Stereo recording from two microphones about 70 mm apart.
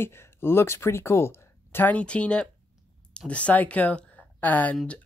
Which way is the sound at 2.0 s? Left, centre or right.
Centre.